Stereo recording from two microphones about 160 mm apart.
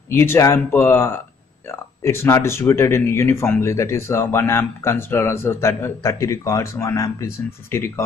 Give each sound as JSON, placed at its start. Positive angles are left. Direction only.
{"t": 0.1, "sound": "speech", "side_deg": 15}